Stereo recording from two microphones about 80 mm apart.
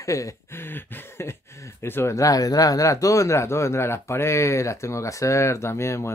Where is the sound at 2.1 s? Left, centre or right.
Left.